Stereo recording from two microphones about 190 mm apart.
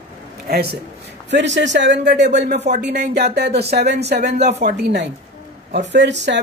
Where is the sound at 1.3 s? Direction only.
70° right (ahead or behind).